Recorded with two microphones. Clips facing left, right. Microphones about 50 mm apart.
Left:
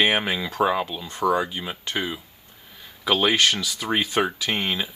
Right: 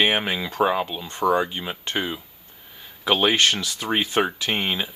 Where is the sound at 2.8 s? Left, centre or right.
Centre.